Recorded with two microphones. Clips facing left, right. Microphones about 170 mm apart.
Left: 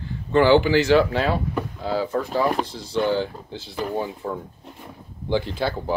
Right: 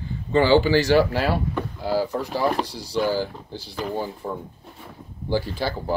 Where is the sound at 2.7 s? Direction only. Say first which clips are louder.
Left 1 dB; 20° left (ahead or behind).